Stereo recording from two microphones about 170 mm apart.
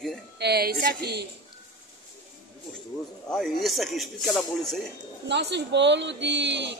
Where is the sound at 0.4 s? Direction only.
70° right (ahead or behind).